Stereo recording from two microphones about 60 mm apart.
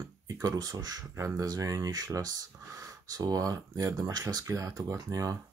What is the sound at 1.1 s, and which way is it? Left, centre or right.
Speech, right.